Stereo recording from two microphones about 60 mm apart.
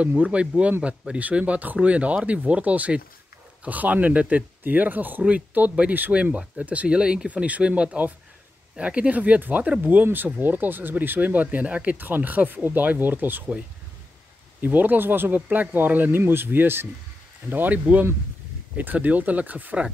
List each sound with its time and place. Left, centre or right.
0.0 s speech: right
14.6 s speech: right